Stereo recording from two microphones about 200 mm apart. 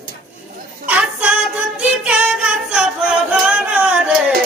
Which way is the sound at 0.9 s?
5° right (ahead or behind).